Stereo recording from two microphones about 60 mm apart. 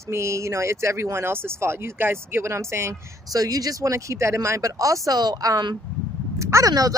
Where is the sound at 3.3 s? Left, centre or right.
Right.